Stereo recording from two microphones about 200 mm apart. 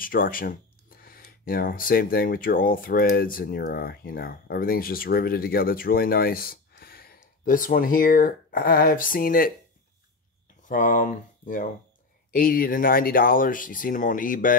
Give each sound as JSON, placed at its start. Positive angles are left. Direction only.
{"t": 0.0, "sound": "speech", "side_deg": 45}
{"t": 10.7, "sound": "speech", "side_deg": 40}